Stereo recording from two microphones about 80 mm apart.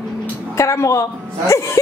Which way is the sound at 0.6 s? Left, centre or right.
Left.